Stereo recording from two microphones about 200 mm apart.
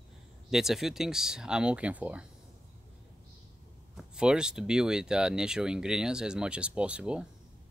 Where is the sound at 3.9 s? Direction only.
5° right (ahead or behind).